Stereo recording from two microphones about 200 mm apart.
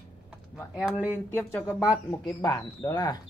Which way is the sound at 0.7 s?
Centre (ahead or behind).